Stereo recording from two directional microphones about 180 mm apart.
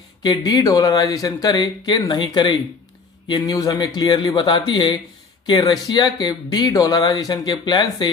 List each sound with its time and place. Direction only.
0.2 s speech: 20° left (ahead or behind)